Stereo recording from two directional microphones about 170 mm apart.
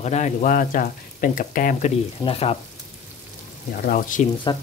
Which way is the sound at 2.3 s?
35° left (ahead or behind).